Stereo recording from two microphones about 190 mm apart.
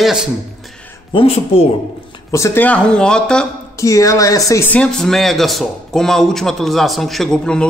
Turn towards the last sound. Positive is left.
turn(degrees=5)  # may be behind; listen again after turning